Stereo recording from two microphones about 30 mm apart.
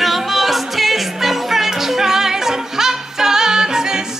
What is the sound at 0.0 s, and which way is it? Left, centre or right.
Music, centre.